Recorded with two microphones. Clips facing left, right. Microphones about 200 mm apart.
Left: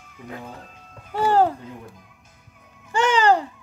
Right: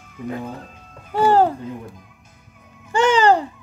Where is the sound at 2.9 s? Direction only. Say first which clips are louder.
Right 3 dB; 25° right (ahead or behind).